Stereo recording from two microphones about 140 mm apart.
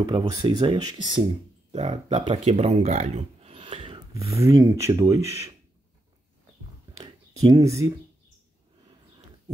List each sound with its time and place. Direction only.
0.0 s speech: 30° right (ahead or behind)
1.7 s speech: 45° right (ahead or behind)
4.3 s speech: 20° right (ahead or behind)
7.4 s speech: 20° right (ahead or behind)